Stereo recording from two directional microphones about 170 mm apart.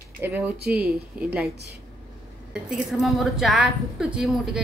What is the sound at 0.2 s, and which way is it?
Speech, 10° right (ahead or behind).